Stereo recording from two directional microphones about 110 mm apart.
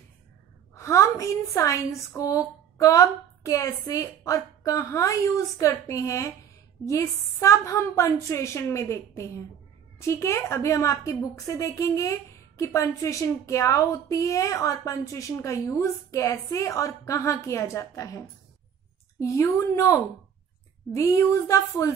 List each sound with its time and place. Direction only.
0.7 s a woman's voice: 25° left (ahead or behind)